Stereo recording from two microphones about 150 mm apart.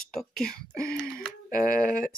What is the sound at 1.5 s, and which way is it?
Speech, 70° left (ahead or behind).